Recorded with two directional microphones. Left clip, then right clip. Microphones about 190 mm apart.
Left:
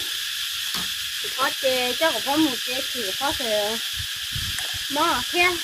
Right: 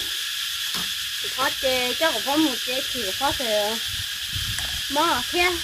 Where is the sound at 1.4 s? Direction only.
10° right (ahead or behind).